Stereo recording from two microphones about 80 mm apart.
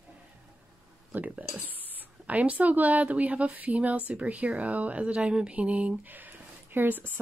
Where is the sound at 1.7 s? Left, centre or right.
Left.